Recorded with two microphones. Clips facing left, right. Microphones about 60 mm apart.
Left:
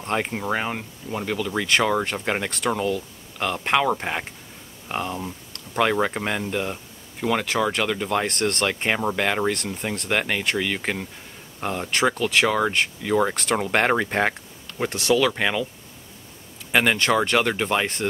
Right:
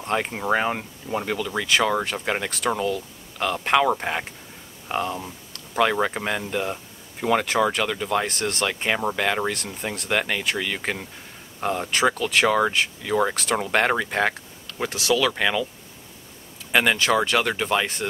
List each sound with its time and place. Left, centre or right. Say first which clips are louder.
0.1 s speech: even; centre
0.4 s speech: right 3 dB; centre
7.7 s speech: even; centre
8.4 s speech: left 2 dB; centre
8.6 s speech: right 2 dB; centre
16.7 s speech: even; centre